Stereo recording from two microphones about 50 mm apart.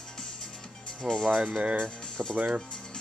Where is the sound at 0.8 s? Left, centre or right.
Centre.